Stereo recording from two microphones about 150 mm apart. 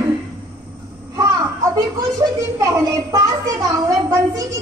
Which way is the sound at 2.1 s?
25° right (ahead or behind).